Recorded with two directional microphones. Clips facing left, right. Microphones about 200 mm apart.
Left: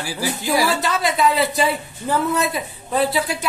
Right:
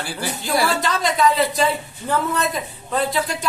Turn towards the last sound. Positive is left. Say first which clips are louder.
# left 2 dB
turn(degrees=5)  # may be behind; listen again after turning